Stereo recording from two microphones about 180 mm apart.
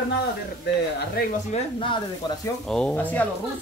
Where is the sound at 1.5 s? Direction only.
30° left (ahead or behind).